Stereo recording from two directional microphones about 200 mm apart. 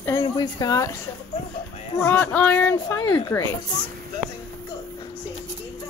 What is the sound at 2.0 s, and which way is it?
Speech, 10° left (ahead or behind).